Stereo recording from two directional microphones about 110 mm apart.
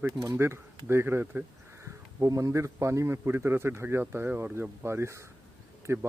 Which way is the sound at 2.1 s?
30° right (ahead or behind).